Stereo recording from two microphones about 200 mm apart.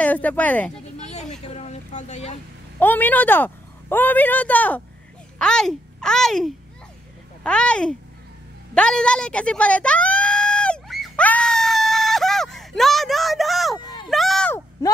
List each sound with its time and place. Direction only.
0.0 s speech: 10° left (ahead or behind)
1.1 s speech: 35° left (ahead or behind)
2.8 s a child's voice: 10° left (ahead or behind)
8.7 s a sound: 5° left (ahead or behind)
14.8 s speech: 15° left (ahead or behind)